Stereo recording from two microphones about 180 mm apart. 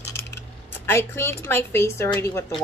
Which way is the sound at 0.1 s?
15° left (ahead or behind).